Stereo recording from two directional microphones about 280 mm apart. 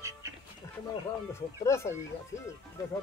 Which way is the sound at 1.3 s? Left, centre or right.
Centre.